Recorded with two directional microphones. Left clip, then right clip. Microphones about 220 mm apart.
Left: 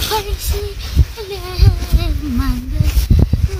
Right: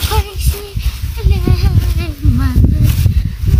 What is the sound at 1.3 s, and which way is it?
Child singing, 5° left (ahead or behind).